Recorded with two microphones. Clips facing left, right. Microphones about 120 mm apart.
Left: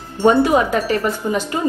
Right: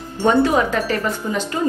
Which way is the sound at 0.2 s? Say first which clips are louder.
Left 2 dB; 15° left (ahead or behind).